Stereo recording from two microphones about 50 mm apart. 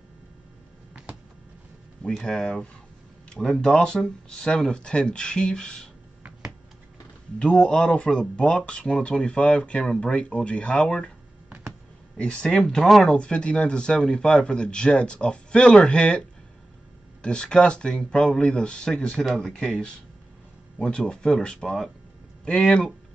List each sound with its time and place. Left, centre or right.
2.1 s speech: centre
3.3 s a sound: centre
3.7 s speech: centre
7.4 s speech: centre
12.2 s speech: left